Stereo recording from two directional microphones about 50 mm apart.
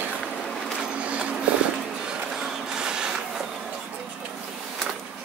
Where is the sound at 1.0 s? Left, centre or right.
Right.